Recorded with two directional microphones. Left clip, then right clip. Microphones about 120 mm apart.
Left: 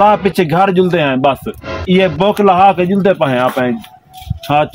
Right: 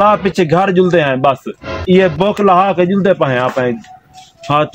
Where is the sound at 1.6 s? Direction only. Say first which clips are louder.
Right 2 dB; centre (ahead or behind).